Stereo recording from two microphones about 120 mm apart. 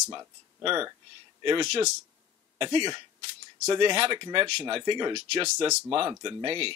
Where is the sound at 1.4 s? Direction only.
40° right (ahead or behind).